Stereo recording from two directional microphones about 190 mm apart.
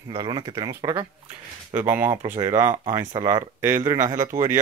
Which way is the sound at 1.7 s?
10° right (ahead or behind).